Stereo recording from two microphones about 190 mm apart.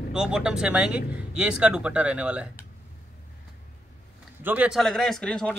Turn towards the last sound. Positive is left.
turn(degrees=5)  # may be behind; listen again after turning